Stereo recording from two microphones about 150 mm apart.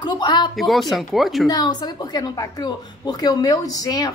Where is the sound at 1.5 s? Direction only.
30° left (ahead or behind).